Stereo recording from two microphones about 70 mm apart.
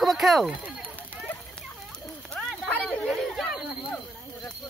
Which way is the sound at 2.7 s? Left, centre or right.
Centre.